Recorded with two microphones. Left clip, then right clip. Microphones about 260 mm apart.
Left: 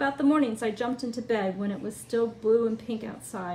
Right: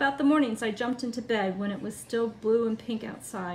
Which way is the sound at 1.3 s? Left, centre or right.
Centre.